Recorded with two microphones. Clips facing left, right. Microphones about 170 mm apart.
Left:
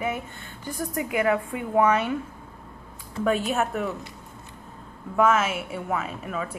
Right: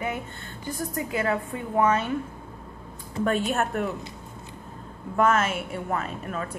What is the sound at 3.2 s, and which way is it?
Speech, 5° left (ahead or behind).